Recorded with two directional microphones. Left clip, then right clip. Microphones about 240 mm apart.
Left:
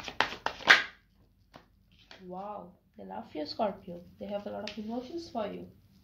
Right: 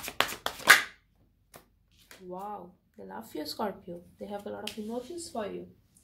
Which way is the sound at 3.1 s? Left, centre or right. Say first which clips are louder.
Even; right.